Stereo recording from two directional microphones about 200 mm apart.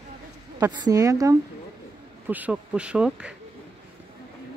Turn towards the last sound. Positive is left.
turn(degrees=-5)  # may be behind; listen again after turning